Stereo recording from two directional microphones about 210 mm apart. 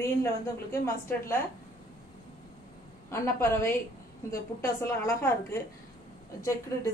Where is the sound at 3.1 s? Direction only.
10° left (ahead or behind).